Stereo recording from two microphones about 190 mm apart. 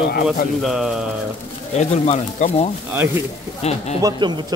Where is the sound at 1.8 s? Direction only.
35° left (ahead or behind).